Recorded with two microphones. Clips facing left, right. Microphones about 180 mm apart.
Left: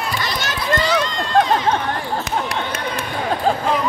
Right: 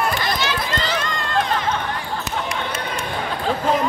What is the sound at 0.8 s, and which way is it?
Run, 50° right (ahead or behind).